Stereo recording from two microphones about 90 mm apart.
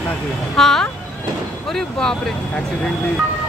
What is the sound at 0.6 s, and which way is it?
Speech, 5° left (ahead or behind).